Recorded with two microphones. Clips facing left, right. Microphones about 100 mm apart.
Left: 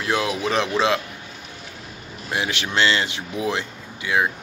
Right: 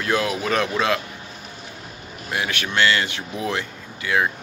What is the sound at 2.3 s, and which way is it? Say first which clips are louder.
Speech: even; 20° left (ahead or behind).